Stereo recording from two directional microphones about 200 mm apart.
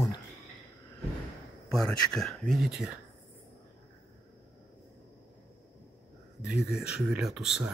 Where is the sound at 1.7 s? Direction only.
Centre (ahead or behind).